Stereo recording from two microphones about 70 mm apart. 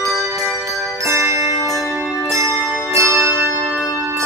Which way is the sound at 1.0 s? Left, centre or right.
Right.